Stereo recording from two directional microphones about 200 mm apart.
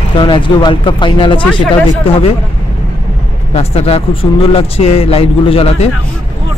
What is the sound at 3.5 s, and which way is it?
Speech, 30° left (ahead or behind).